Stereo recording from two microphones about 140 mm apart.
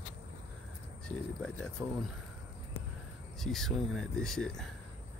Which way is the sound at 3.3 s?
Centre (ahead or behind).